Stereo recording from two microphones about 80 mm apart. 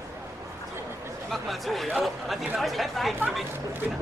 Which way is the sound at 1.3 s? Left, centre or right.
Centre.